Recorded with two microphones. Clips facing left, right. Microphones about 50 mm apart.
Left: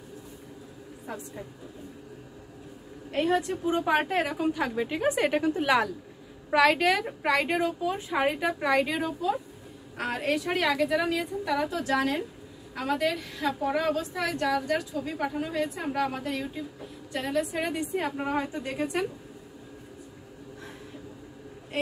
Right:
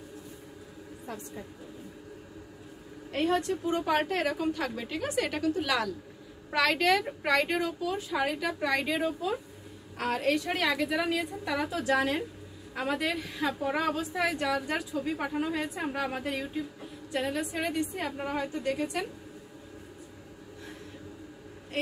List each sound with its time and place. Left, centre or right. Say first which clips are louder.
3.1 s a woman's voice: left 2 dB; centre; by 5.9 s left
6.5 s a woman's voice: left 3 dB; centre
8.5 s a woman's voice: left 3 dB; centre
9.9 s a woman's voice: even; centre